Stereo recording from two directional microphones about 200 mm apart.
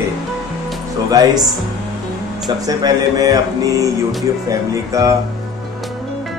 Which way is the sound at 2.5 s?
20° right (ahead or behind).